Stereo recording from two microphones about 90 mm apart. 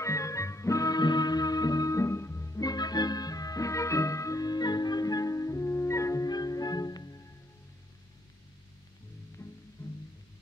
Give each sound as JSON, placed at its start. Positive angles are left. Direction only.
{"t": 0.0, "sound": "music", "side_deg": 35}